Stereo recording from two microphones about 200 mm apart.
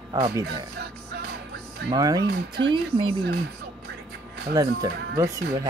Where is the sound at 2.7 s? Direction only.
25° right (ahead or behind).